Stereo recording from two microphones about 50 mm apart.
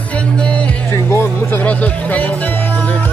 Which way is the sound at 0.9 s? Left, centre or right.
Left.